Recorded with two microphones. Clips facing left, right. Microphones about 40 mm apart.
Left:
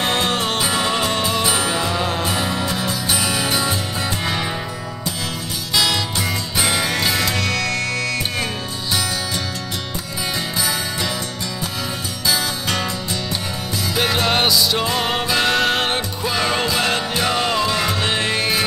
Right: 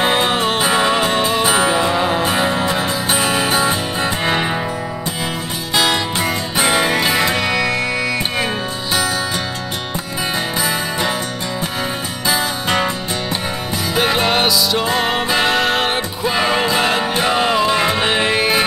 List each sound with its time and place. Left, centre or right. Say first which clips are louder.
0.0 s music: right 4 dB; centre
0.6 s music: right 5 dB; right
2.2 s music: right 5 dB; right
5.8 s music: right 3 dB; right; by 8.5 s centre
10.6 s music: right 3 dB; right
12.3 s music: right 3 dB; right
13.9 s music: right 3 dB; centre
14.3 s music: right 2 dB; centre
16.3 s music: right 4 dB; centre
17.7 s music: right 4 dB; right